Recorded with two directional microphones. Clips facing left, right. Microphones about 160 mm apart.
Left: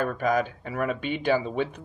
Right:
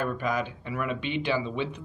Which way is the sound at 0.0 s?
45° left (ahead or behind).